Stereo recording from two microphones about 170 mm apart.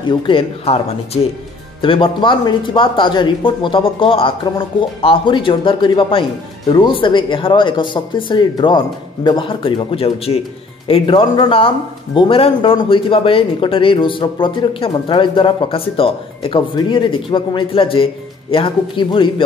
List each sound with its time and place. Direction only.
0.1 s speech: 30° left (ahead or behind)